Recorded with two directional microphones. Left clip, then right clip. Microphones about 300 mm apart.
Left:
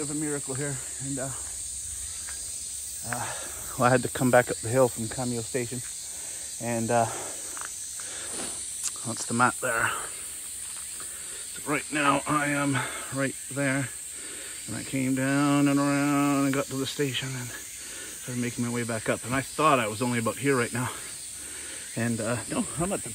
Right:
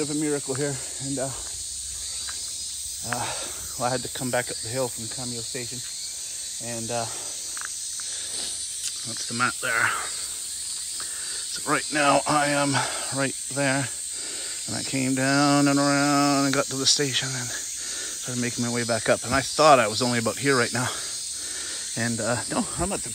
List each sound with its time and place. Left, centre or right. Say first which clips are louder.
0.0 s speech: right 5 dB; centre
3.1 s speech: right 4 dB; centre
4.3 s speech: left 6 dB; centre
4.8 s speech: left 4 dB; left
6.7 s speech: left 6 dB; left
8.4 s cricket: right 4 dB; centre
11.6 s a sound: right 3 dB; centre
21.9 s a sound: right 3 dB; centre